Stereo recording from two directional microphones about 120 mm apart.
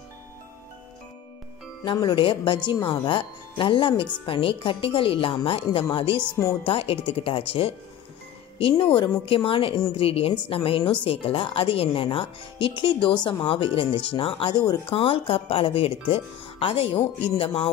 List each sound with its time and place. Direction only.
1.9 s a woman's voice: 40° left (ahead or behind)
14.9 s a woman's voice: 50° left (ahead or behind)